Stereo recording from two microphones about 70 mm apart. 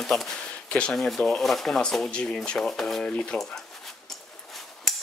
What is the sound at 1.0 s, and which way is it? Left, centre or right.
Speech, centre.